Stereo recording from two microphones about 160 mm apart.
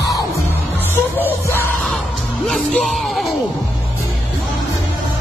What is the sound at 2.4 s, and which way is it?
Music, 5° left (ahead or behind).